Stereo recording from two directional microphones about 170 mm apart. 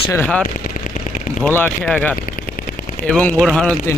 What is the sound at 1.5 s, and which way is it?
Speech, 10° left (ahead or behind).